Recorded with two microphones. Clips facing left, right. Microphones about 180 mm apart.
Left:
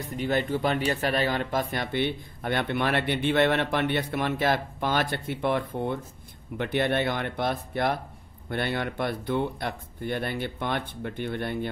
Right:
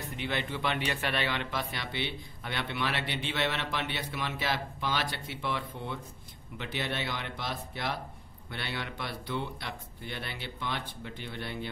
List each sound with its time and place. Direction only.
0.1 s speech: 45° left (ahead or behind)